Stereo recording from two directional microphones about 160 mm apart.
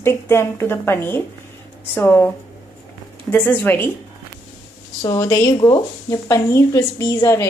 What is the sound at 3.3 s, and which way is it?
Speech, 10° left (ahead or behind).